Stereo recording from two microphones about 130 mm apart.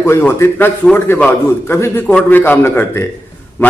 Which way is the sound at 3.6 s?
20° left (ahead or behind).